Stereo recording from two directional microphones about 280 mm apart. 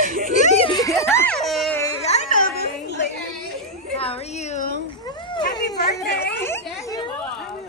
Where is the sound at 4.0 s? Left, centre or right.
Left.